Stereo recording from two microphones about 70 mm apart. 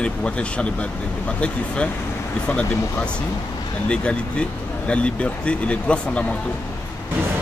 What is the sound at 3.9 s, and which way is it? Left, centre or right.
Speech, centre.